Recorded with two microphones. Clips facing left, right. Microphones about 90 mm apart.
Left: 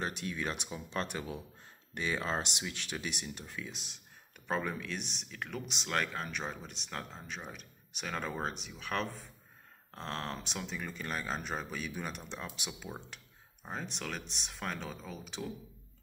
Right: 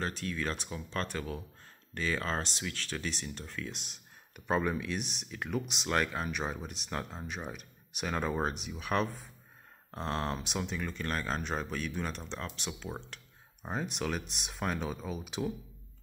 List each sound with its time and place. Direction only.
0.0 s speech: 15° left (ahead or behind); by 10.8 s 5° right (ahead or behind)
10.8 s speech: 5° left (ahead or behind)
13.6 s speech: 10° right (ahead or behind)